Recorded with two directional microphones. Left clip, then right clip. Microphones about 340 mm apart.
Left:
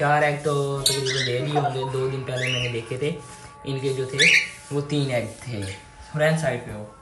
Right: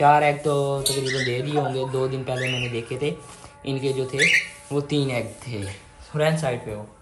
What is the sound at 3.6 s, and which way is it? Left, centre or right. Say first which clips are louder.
Speech: right 1 dB; centre.